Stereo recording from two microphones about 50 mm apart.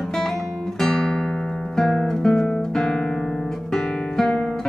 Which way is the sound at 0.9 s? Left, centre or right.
Centre.